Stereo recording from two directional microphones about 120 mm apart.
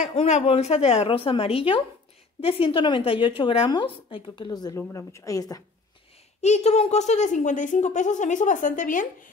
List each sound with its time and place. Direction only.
0.1 s a woman's voice: 60° left (ahead or behind); by 4.5 s 40° left (ahead or behind)
4.5 s a woman's voice: 30° left (ahead or behind)
6.4 s a woman's voice: 70° left (ahead or behind); by 9.0 s 90° left